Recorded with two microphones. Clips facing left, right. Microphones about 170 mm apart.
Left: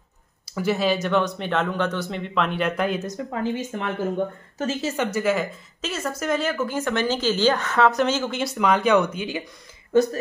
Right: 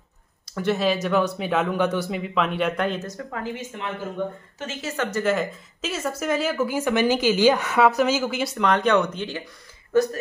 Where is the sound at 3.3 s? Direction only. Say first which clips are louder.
Left 7 dB; 35° left (ahead or behind).